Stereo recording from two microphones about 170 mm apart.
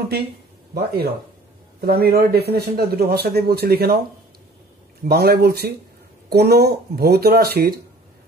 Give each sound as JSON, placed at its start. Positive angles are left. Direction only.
{"t": 0.7, "sound": "speech", "side_deg": -65}
{"t": 5.0, "sound": "a man's voice", "side_deg": -65}